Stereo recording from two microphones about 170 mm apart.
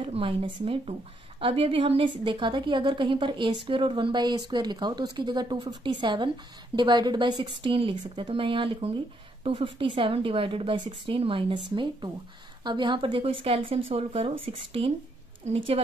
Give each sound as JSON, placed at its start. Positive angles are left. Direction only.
{"t": 0.0, "sound": "a woman's voice", "side_deg": -35}